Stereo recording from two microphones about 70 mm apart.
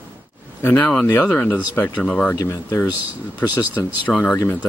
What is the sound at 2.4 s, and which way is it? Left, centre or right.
Speech, left.